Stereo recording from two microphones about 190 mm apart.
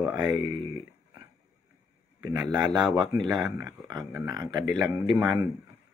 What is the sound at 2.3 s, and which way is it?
Speech, 20° right (ahead or behind).